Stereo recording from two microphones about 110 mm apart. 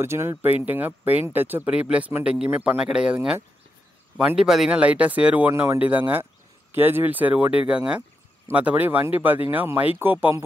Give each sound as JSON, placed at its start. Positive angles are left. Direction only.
{"t": 0.0, "sound": "speech", "side_deg": -25}
{"t": 4.4, "sound": "speech", "side_deg": -5}